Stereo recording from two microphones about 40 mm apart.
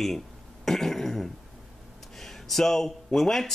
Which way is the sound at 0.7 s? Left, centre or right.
Centre.